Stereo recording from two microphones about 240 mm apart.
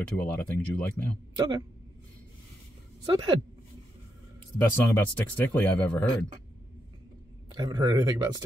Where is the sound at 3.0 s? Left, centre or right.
Centre.